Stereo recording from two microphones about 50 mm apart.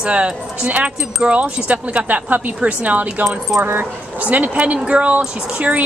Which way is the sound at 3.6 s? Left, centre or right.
Right.